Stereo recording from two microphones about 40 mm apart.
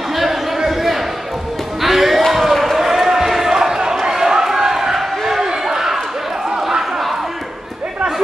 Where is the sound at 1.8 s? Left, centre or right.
Centre.